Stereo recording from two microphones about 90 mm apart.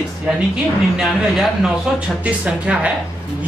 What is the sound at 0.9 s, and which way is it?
A man's voice, 5° right (ahead or behind).